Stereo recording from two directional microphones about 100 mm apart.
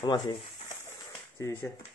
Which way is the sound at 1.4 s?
30° left (ahead or behind).